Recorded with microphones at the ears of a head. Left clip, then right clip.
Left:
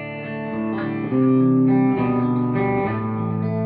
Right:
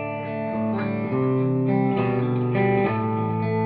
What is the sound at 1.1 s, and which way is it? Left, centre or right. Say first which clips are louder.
Music: left 6 dB; left.